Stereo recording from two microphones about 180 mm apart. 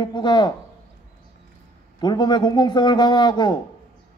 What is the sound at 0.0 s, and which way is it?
Speech, 25° left (ahead or behind).